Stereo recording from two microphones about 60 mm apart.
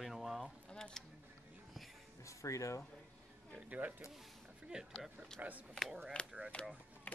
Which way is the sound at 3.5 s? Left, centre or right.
Right.